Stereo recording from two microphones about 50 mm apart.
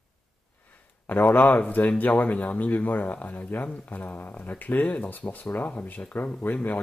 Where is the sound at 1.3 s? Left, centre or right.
Left.